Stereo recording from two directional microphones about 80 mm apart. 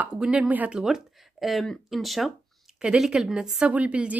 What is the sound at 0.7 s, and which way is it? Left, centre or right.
Speech, centre.